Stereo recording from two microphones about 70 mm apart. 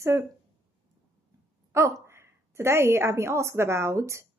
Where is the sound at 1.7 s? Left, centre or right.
Right.